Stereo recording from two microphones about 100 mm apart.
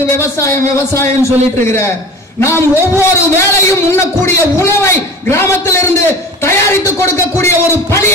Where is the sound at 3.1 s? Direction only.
30° left (ahead or behind).